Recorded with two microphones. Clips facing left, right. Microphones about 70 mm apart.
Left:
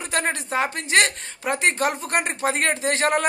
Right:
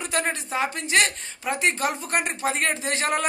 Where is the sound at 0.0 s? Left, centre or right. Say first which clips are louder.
Left 1 dB; left.